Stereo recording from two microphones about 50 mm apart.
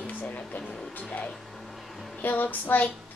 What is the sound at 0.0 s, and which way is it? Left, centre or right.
Music, left.